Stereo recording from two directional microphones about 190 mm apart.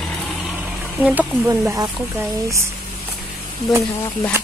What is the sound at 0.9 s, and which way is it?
Speech, 10° right (ahead or behind).